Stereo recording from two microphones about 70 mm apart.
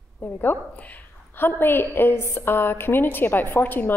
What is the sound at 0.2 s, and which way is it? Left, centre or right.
A woman's voice, left.